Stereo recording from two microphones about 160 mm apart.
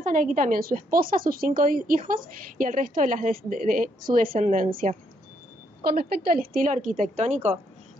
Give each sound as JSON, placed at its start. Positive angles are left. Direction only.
{"t": 0.0, "sound": "a woman's voice", "side_deg": -55}
{"t": 5.9, "sound": "a woman's voice", "side_deg": -70}